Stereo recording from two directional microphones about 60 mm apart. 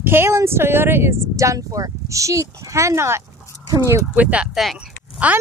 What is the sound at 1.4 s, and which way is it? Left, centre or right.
Speech, right.